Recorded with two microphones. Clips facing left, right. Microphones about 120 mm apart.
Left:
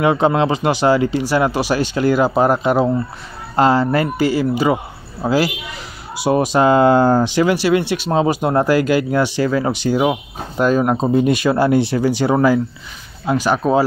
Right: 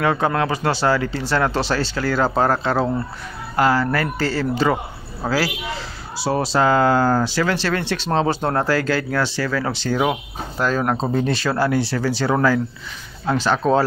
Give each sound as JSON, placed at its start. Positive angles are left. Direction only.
{"t": 0.0, "sound": "speech", "side_deg": 15}